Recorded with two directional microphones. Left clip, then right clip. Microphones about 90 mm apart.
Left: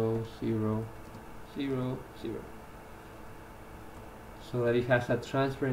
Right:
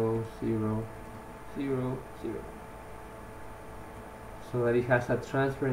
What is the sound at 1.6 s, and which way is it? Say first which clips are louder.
Speech: right 2 dB; 25° left (ahead or behind).